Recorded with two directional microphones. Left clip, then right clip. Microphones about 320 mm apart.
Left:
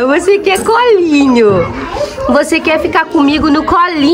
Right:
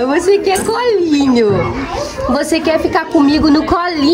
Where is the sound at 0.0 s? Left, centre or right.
Centre.